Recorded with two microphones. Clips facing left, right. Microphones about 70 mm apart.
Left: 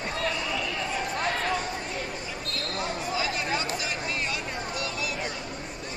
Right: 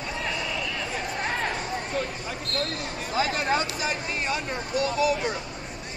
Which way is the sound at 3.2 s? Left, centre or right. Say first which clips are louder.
Right 7 dB; right.